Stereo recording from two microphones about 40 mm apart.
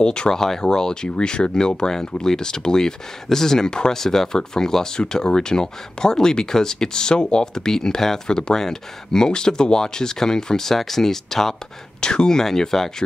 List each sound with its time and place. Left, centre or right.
0.0 s speech: left
0.3 s speech: centre